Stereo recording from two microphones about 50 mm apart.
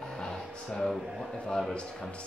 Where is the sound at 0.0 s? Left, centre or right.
Centre.